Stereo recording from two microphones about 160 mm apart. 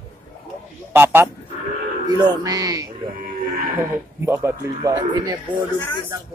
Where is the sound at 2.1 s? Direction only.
20° right (ahead or behind).